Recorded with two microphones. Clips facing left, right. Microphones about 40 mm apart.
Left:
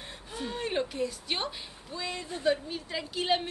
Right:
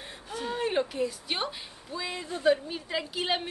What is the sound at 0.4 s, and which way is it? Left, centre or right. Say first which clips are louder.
A woman's voice: right 3 dB; centre.